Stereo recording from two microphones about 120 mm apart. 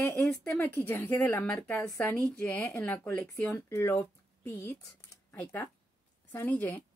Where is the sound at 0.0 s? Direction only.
15° left (ahead or behind).